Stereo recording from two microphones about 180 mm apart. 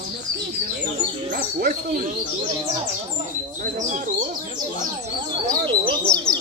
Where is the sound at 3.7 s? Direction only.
45° right (ahead or behind).